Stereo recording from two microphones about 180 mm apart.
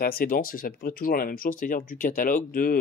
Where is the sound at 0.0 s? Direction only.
55° left (ahead or behind).